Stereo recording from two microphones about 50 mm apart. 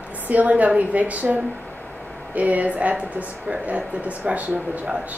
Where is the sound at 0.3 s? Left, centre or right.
Right.